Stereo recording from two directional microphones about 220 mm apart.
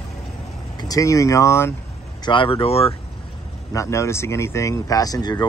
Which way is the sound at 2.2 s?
25° left (ahead or behind).